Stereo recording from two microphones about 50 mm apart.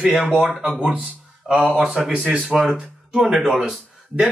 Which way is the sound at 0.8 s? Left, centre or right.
Right.